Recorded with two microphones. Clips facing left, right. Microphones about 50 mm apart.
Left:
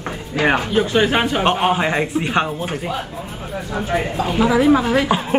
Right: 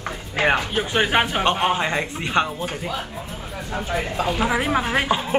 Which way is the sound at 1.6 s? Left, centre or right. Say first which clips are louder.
Left 4 dB; centre.